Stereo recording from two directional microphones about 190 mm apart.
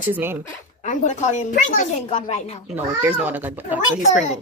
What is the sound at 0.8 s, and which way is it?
Speech, 40° left (ahead or behind).